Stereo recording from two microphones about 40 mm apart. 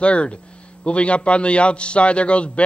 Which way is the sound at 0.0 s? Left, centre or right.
Left.